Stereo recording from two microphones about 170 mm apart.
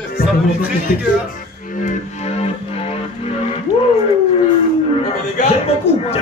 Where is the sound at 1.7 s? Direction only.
50° left (ahead or behind).